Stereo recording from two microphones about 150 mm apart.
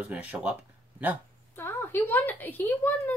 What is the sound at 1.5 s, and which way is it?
A woman's voice, 15° left (ahead or behind).